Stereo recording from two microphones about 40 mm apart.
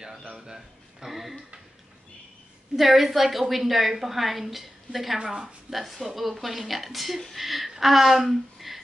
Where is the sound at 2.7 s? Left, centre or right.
Centre.